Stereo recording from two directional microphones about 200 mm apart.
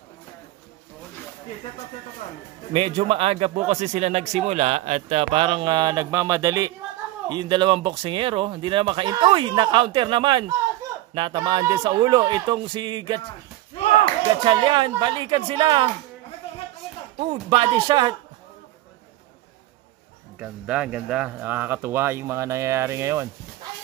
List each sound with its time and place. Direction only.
2.7 s speech: 30° right (ahead or behind)
14.4 s speech: 25° right (ahead or behind)
17.3 s speech: 25° right (ahead or behind)
20.3 s speech: 5° right (ahead or behind)